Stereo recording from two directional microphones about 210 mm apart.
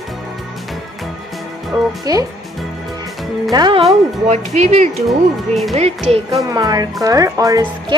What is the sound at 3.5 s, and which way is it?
Speech, 25° right (ahead or behind).